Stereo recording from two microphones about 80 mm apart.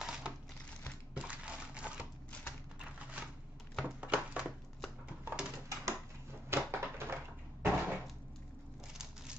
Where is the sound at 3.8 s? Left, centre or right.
Centre.